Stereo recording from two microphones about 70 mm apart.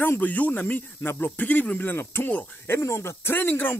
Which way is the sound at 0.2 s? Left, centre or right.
Left.